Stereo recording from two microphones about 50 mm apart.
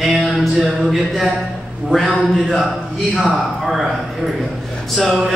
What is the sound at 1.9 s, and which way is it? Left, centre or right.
Speech, centre.